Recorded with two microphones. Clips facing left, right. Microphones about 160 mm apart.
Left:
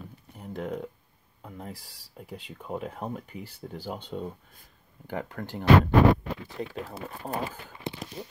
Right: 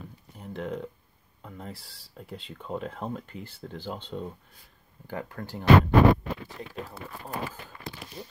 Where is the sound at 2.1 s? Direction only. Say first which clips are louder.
Even; 10° left (ahead or behind).